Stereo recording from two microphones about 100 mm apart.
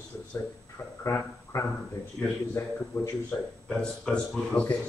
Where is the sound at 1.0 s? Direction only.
30° left (ahead or behind).